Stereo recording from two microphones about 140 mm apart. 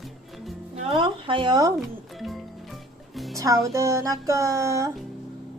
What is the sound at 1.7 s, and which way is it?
Music, centre (ahead or behind).